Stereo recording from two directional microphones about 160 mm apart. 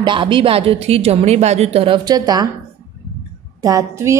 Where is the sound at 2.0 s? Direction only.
25° right (ahead or behind).